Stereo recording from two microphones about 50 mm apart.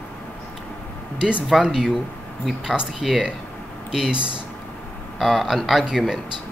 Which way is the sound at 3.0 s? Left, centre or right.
Centre.